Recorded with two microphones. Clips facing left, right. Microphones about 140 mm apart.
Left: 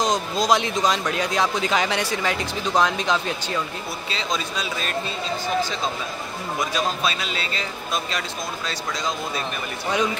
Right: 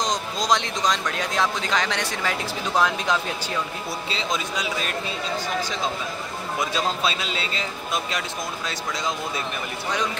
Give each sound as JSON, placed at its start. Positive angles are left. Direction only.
{"t": 0.0, "sound": "speech", "side_deg": 5}
{"t": 6.7, "sound": "speech", "side_deg": -25}